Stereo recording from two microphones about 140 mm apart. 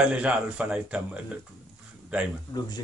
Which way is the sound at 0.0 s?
10° right (ahead or behind).